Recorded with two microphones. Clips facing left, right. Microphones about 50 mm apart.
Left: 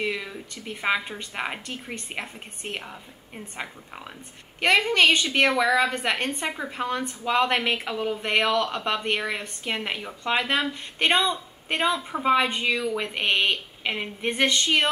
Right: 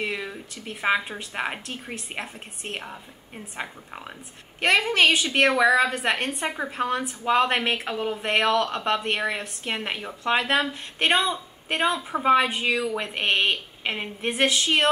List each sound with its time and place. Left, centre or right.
0.0 s a woman's voice: centre
11.1 s a woman's voice: centre
11.7 s a woman's voice: centre